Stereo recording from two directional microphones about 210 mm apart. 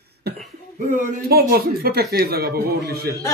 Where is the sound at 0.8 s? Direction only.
40° right (ahead or behind).